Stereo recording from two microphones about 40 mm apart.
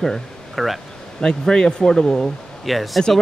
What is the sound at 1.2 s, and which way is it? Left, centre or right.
Speech, centre.